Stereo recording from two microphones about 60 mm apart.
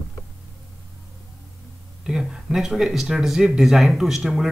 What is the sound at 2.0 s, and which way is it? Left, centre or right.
Speech, centre.